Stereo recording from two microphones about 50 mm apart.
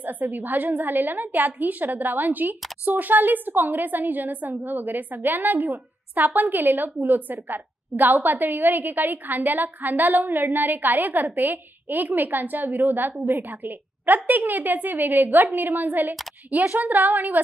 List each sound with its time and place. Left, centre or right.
0.0 s a woman's voice: right